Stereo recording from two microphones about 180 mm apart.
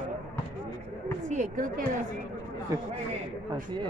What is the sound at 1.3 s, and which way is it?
Speech, 45° right (ahead or behind).